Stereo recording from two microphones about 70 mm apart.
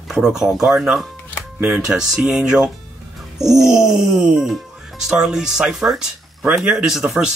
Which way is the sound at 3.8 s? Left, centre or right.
Centre.